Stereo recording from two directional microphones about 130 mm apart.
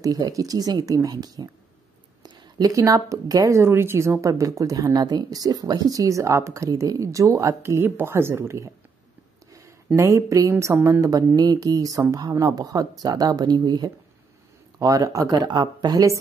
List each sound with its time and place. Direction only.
0.0 s speech: 25° right (ahead or behind)
9.5 s a sound: 25° right (ahead or behind)
9.9 s speech: 25° right (ahead or behind)